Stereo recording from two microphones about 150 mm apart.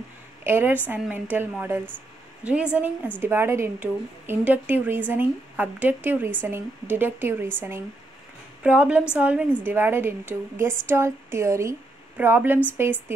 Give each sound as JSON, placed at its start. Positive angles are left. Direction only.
{"t": 0.4, "sound": "a woman's voice", "side_deg": -15}
{"t": 8.6, "sound": "a woman's voice", "side_deg": -10}